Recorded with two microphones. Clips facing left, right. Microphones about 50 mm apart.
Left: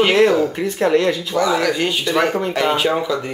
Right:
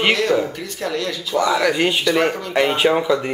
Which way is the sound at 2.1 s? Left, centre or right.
Centre.